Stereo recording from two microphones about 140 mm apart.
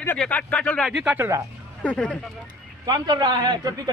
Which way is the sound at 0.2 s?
10° left (ahead or behind).